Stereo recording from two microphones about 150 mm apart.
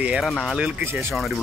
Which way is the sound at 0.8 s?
15° right (ahead or behind).